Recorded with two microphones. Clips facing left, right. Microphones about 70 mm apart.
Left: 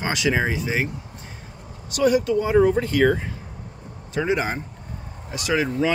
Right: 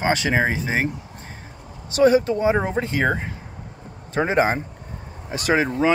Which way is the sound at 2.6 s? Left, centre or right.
Right.